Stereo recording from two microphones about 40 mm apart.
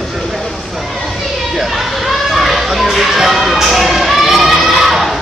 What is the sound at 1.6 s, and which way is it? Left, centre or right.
Children playing, centre.